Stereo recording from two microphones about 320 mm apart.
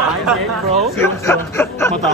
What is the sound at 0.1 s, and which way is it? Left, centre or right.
Speech, centre.